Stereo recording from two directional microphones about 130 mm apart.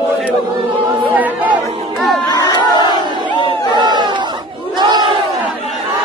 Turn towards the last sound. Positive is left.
turn(degrees=-35)  # may be behind; listen again after turning